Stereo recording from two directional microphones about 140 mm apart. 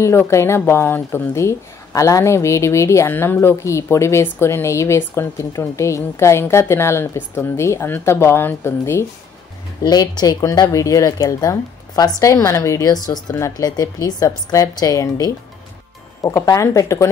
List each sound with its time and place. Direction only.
0.0 s a woman's voice: 20° left (ahead or behind)
9.8 s a woman's voice: 30° left (ahead or behind)